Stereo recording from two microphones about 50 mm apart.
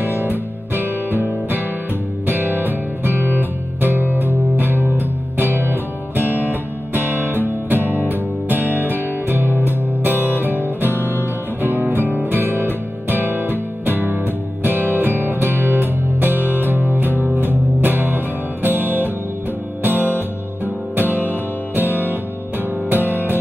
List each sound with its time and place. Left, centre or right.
0.0 s music: right
16.3 s music: left
16.6 s music: right